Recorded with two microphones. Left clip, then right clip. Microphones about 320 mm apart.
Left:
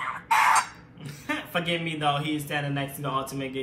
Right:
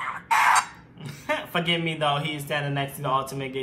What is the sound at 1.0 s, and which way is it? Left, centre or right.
A man's voice, centre.